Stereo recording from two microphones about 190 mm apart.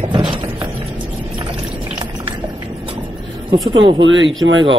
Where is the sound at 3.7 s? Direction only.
80° right.